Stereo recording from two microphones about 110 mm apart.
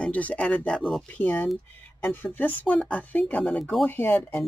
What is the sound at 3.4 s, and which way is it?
Speech, centre (ahead or behind).